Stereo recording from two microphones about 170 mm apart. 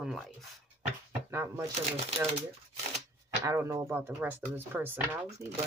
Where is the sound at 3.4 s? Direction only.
15° right (ahead or behind).